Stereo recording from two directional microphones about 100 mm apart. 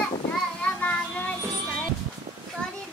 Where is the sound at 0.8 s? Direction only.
15° left (ahead or behind).